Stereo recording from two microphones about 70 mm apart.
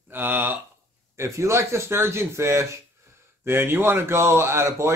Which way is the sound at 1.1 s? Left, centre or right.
Right.